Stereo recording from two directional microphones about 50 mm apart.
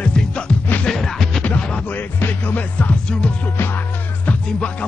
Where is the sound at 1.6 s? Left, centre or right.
Left.